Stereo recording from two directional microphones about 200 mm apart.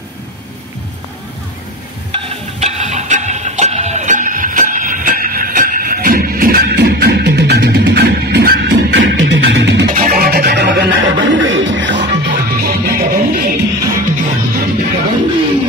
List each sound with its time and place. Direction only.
2.1 s music: 35° right (ahead or behind); by 9.8 s 60° right (ahead or behind)
9.8 s music: 45° right (ahead or behind)